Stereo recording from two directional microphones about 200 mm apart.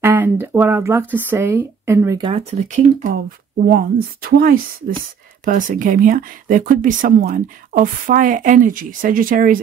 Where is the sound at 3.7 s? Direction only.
50° right (ahead or behind).